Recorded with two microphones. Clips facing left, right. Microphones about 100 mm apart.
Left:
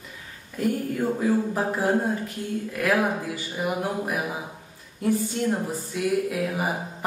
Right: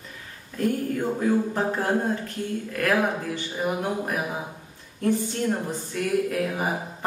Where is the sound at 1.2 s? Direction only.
5° left (ahead or behind).